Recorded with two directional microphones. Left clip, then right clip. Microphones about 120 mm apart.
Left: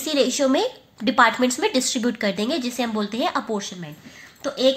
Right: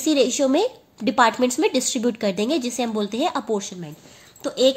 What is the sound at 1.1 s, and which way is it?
A woman's voice, 40° right (ahead or behind).